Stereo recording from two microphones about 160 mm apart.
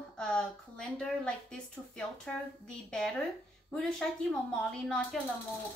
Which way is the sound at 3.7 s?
5° left (ahead or behind).